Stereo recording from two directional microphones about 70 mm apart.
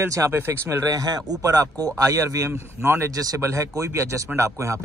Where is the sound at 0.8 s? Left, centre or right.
Right.